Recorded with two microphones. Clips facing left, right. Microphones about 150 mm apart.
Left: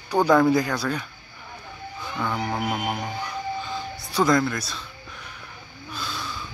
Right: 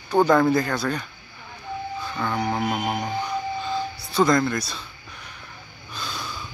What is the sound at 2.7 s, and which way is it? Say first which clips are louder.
Speech: right 2 dB; 10° right (ahead or behind).